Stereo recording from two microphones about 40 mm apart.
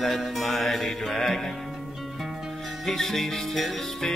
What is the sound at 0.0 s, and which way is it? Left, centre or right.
Music, centre.